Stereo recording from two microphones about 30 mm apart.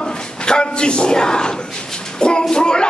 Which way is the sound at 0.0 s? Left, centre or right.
Left.